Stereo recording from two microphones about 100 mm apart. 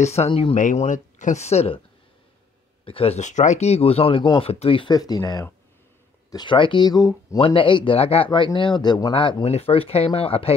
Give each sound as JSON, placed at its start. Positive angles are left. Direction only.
{"t": 0.0, "sound": "speech", "side_deg": 90}
{"t": 1.4, "sound": "speech", "side_deg": 90}
{"t": 2.8, "sound": "speech", "side_deg": 65}
{"t": 4.8, "sound": "speech", "side_deg": 40}
{"t": 6.3, "sound": "speech", "side_deg": 55}
{"t": 7.3, "sound": "speech", "side_deg": 65}
{"t": 8.5, "sound": "speech", "side_deg": 50}
{"t": 9.1, "sound": "speech", "side_deg": 60}